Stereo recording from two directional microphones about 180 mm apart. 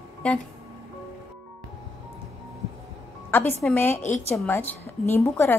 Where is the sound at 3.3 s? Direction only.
10° left (ahead or behind).